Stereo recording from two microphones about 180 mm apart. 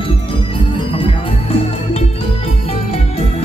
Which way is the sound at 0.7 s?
30° left (ahead or behind).